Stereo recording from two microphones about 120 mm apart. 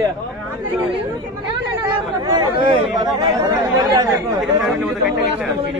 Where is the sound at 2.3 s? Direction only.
40° right (ahead or behind).